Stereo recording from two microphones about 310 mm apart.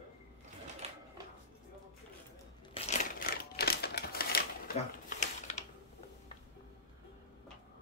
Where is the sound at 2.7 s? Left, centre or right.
Left.